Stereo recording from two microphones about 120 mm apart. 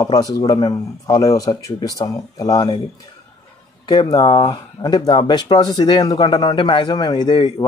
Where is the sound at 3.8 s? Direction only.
35° left (ahead or behind).